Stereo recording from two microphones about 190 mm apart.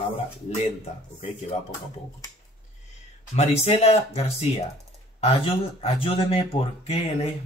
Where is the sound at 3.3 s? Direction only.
35° left (ahead or behind).